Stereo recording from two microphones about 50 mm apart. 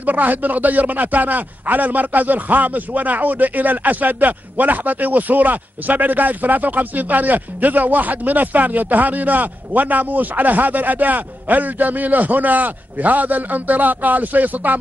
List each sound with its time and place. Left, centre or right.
0.0 s speech: right